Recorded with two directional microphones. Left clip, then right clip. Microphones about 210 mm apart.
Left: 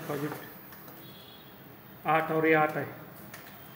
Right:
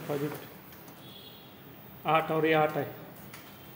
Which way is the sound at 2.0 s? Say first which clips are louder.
Even; 20° right (ahead or behind).